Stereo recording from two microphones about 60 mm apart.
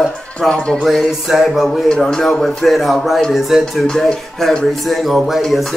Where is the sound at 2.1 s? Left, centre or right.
Centre.